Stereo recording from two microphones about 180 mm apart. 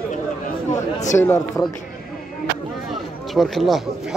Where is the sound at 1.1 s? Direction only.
20° left (ahead or behind).